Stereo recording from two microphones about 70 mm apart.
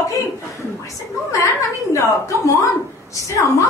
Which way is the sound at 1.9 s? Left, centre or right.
Left.